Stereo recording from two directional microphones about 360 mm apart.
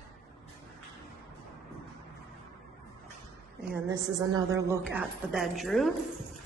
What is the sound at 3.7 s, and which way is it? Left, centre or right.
A woman's voice, centre.